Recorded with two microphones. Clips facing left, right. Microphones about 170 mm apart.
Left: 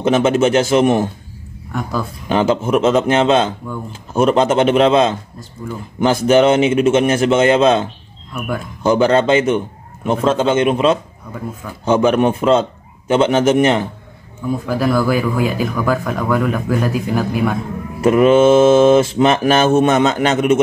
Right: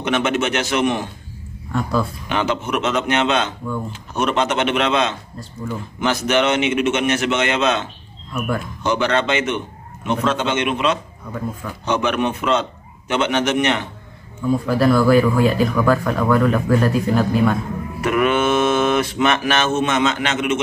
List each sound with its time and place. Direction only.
0.0 s mantra: 30° left (ahead or behind)
0.8 s a man's voice: 45° left (ahead or behind)
1.7 s speech: centre (ahead or behind)
2.2 s mantra: 35° left (ahead or behind)
8.3 s speech: 10° left (ahead or behind)
8.8 s mantra: 35° left (ahead or behind)
14.8 s speech: 5° left (ahead or behind)
18.0 s mantra: 30° left (ahead or behind)